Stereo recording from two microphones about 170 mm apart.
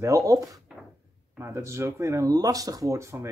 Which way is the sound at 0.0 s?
20° right (ahead or behind).